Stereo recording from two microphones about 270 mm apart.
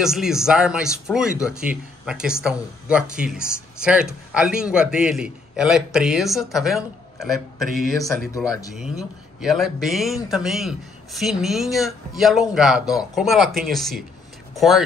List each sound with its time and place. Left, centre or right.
0.0 s speech: centre